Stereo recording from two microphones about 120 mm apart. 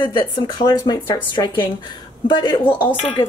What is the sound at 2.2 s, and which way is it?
Speech, 40° left (ahead or behind).